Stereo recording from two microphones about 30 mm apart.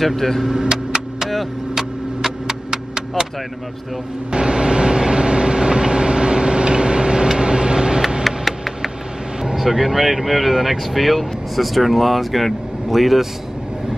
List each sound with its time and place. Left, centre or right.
0.0 s speech: centre
0.5 s vehicle: right
1.8 s a sound: centre
4.3 s vehicle: right
8.5 s a sound: centre
9.4 s speech: centre